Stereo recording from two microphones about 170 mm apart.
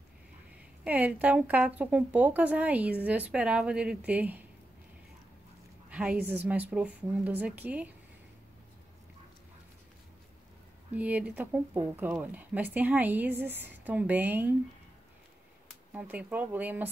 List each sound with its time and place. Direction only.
0.8 s speech: 10° right (ahead or behind)
5.9 s a sound: 5° right (ahead or behind)
6.2 s speech: 10° right (ahead or behind)
10.9 s speech: 10° right (ahead or behind)
15.9 s speech: 10° right (ahead or behind)